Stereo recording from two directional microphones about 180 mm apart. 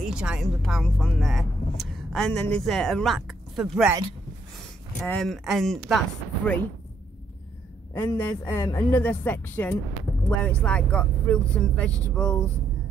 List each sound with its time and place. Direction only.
0.0 s speech: 5° right (ahead or behind)
5.0 s speech: 5° left (ahead or behind)
7.9 s speech: 10° left (ahead or behind)